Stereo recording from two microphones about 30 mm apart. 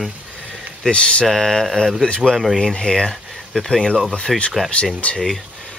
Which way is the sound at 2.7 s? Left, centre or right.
Left.